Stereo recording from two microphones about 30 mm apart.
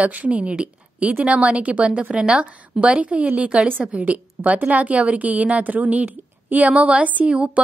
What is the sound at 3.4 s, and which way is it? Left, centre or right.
Speech, right.